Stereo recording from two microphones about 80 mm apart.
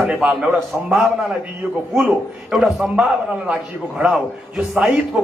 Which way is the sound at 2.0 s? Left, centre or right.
Centre.